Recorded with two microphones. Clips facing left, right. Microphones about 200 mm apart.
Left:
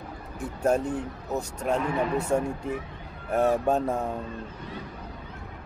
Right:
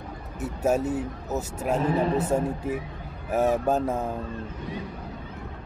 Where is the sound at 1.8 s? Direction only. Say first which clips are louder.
Right 6 dB; 35° right (ahead or behind).